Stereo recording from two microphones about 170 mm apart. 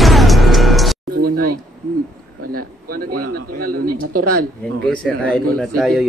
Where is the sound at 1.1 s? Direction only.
60° right (ahead or behind).